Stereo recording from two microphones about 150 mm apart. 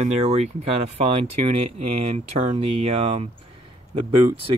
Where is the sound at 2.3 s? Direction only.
40° right (ahead or behind).